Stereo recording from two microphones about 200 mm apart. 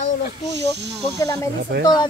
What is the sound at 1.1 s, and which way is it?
Speech, 15° left (ahead or behind).